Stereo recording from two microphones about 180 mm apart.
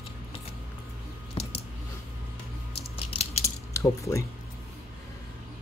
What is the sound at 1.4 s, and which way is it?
Typing, 35° left (ahead or behind).